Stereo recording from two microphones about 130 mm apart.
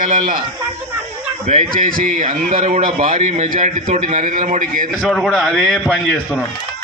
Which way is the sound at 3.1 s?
60° right (ahead or behind).